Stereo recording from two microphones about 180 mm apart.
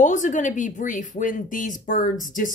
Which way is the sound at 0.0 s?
45° left (ahead or behind).